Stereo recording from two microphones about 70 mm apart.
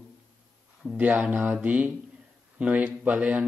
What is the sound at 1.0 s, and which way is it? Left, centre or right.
Speech, right.